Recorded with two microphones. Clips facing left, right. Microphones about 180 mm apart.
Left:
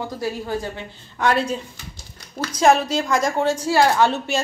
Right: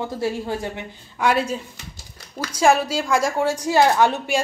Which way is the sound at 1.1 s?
10° right (ahead or behind).